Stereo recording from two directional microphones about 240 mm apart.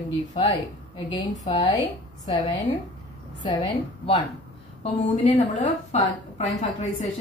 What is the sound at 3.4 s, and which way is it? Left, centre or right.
A woman's voice, centre.